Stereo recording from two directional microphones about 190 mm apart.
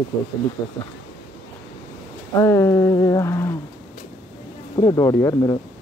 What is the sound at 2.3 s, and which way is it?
Speech, 15° left (ahead or behind).